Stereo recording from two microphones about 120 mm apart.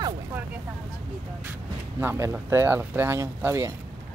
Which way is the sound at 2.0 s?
20° right (ahead or behind).